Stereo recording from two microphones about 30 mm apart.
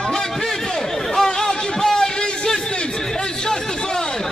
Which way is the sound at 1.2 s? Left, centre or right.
Centre.